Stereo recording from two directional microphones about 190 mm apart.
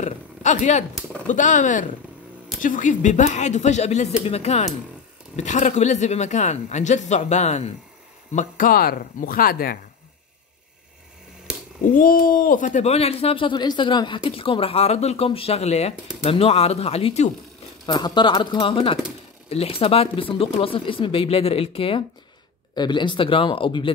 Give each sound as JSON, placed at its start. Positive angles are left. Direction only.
{"t": 0.0, "sound": "a sound", "side_deg": 40}
{"t": 1.2, "sound": "speech", "side_deg": 40}
{"t": 8.4, "sound": "speech", "side_deg": 50}
{"t": 11.8, "sound": "speech", "side_deg": 45}
{"t": 17.8, "sound": "speech", "side_deg": 20}